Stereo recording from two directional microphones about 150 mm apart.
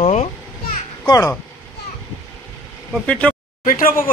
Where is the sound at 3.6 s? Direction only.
70° left (ahead or behind).